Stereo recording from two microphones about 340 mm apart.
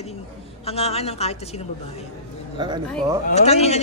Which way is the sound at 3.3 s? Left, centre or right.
Centre.